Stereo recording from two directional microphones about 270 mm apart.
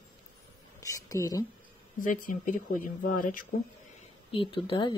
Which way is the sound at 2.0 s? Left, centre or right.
Left.